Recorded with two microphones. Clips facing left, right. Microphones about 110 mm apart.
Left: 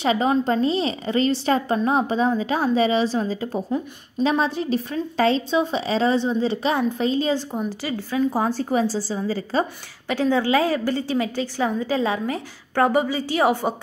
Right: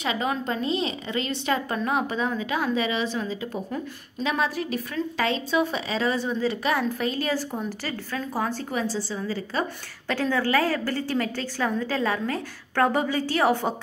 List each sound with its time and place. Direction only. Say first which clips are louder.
0.0 s a woman's voice: left 7 dB; 30° left (ahead or behind); by 8.2 s 15° left (ahead or behind)
8.3 s a woman's voice: left 6 dB; 30° left (ahead or behind)
10.0 s a woman's voice: left 4 dB; 15° left (ahead or behind)